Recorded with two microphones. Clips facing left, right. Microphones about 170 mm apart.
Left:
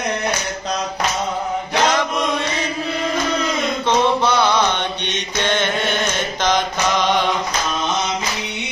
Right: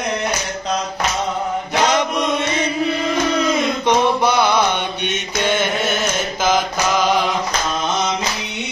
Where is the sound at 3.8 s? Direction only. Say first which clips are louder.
Even; 10° right (ahead or behind).